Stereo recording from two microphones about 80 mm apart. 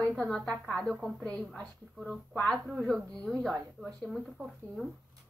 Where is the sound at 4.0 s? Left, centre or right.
Centre.